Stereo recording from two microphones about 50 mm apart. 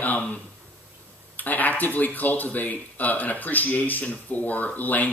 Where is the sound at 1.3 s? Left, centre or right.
Left.